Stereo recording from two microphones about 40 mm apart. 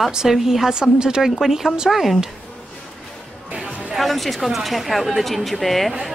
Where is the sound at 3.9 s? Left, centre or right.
Centre.